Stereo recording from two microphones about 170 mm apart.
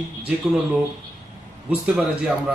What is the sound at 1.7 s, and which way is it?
Speech, 5° right (ahead or behind).